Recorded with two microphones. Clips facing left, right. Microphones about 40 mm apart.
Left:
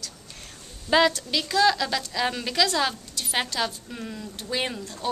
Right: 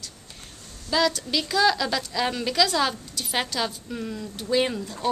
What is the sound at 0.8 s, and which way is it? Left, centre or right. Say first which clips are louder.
Speech: left 3 dB; left.